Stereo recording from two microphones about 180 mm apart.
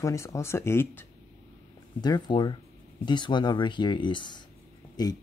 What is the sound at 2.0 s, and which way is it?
Speech, 25° left (ahead or behind).